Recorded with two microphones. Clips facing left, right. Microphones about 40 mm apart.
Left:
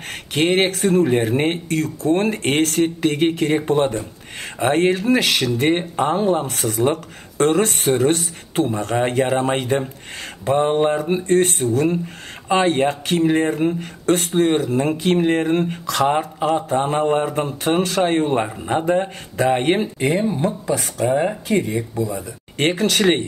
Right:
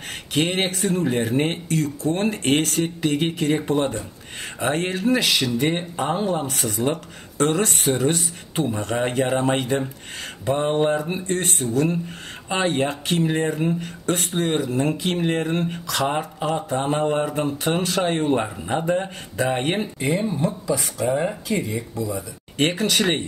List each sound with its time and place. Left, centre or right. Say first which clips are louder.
0.1 s speech: left 5 dB; left